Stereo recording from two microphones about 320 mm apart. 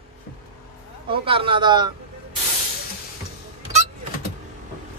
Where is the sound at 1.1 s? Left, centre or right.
Centre.